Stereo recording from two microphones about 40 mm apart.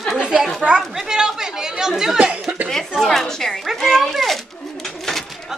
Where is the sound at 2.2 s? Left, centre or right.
Right.